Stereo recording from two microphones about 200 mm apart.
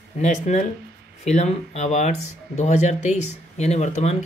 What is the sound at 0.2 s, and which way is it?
Speech, 35° left (ahead or behind).